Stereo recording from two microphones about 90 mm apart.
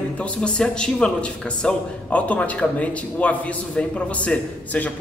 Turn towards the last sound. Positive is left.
turn(degrees=15)  # may be behind; listen again after turning